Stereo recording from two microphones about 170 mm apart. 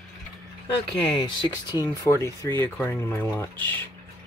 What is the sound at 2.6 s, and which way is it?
Speech, 15° left (ahead or behind).